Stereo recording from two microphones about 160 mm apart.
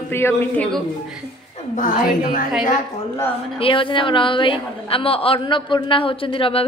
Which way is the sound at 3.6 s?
35° left (ahead or behind).